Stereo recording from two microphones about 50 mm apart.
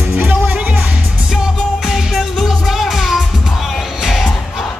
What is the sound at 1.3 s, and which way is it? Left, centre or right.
Music, centre.